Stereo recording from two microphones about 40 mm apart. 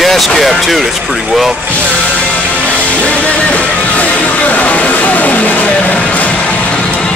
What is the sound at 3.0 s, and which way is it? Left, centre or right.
Music, left.